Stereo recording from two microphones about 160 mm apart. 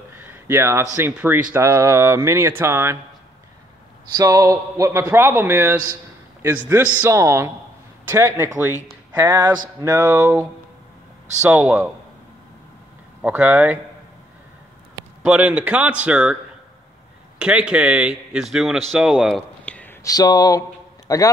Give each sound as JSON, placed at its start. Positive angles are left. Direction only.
{"t": 0.1, "sound": "a sound", "side_deg": -15}
{"t": 0.9, "sound": "speech", "side_deg": -15}
{"t": 4.2, "sound": "speech", "side_deg": -20}
{"t": 11.4, "sound": "speech", "side_deg": -5}
{"t": 13.2, "sound": "speech", "side_deg": -10}
{"t": 15.2, "sound": "speech", "side_deg": -5}
{"t": 17.4, "sound": "speech", "side_deg": -5}
{"t": 19.6, "sound": "a sound", "side_deg": 10}
{"t": 21.1, "sound": "a man's voice", "side_deg": 20}